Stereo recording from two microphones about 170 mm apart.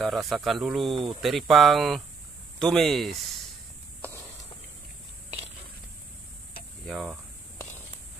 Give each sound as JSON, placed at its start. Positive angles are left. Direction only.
{"t": 0.0, "sound": "speech", "side_deg": 0}
{"t": 4.0, "sound": "a sound", "side_deg": 15}
{"t": 6.9, "sound": "speech", "side_deg": 0}